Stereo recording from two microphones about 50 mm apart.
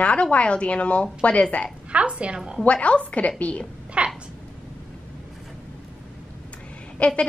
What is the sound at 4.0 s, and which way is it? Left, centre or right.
Speech, right.